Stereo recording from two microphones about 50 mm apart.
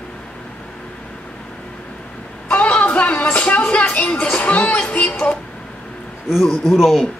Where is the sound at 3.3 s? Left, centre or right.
Left.